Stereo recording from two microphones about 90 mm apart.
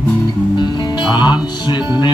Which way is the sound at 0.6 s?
55° left (ahead or behind).